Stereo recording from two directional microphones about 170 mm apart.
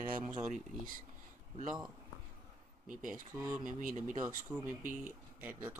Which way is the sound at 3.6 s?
50° right (ahead or behind).